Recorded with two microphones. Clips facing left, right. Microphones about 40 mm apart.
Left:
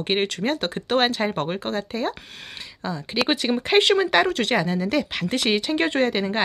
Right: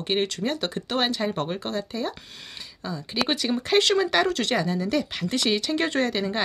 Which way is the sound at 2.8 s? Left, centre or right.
Left.